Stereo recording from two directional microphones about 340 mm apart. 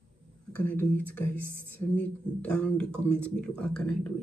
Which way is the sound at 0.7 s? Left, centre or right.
Centre.